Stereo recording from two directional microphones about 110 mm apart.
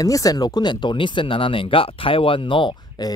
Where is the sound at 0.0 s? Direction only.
30° left (ahead or behind).